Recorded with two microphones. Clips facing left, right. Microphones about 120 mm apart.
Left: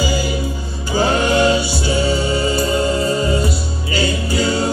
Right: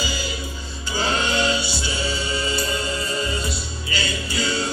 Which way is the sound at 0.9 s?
50° left (ahead or behind).